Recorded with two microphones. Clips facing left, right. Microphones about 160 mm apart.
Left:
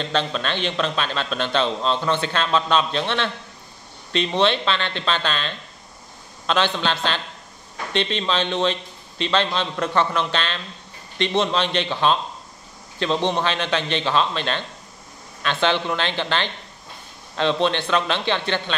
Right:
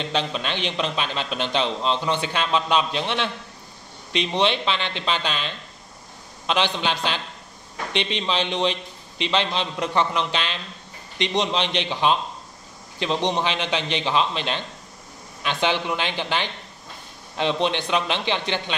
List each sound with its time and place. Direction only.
0.0 s a man's voice: 15° right (ahead or behind)